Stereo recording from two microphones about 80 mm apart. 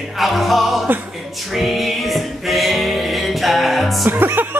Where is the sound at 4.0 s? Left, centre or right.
Right.